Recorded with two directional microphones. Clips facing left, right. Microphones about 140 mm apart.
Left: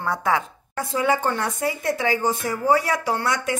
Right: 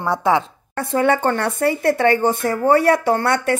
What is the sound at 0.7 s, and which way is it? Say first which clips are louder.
Speech: right 5 dB; 65° right (ahead or behind).